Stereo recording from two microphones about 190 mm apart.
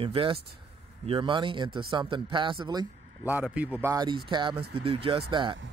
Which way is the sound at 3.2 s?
5° right (ahead or behind).